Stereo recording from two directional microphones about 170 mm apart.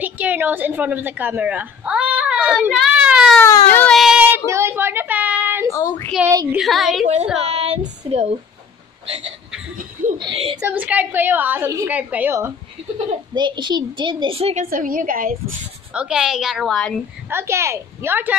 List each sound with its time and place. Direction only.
0.0 s a sound: 10° right (ahead or behind)
3.3 s speech: 10° left (ahead or behind)
3.9 s child singing: 5° right (ahead or behind)
4.5 s a sound: 15° right (ahead or behind)
5.7 s speech: 15° left (ahead or behind)
6.5 s a woman's voice: centre (ahead or behind)
7.5 s a sound: 40° right (ahead or behind)
8.0 s speech: 35° right (ahead or behind)
10.1 s speech: 30° right (ahead or behind)
10.6 s a woman's voice: 10° right (ahead or behind)
13.3 s a woman's voice: 25° right (ahead or behind); by 15.3 s 55° right (ahead or behind)
15.9 s a woman's voice: 5° right (ahead or behind)
17.3 s a woman's voice: 15° right (ahead or behind)